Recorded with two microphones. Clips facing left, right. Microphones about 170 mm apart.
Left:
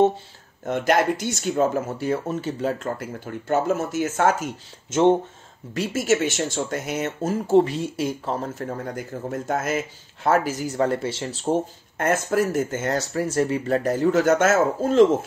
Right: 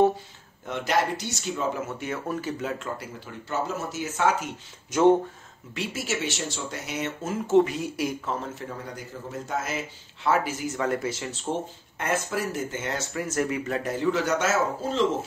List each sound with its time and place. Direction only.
0.7 s speech: 50° left (ahead or behind); by 2.5 s 25° left (ahead or behind)
2.6 s speech: 45° left (ahead or behind)
5.8 s speech: 45° left (ahead or behind)
12.0 s speech: 50° left (ahead or behind)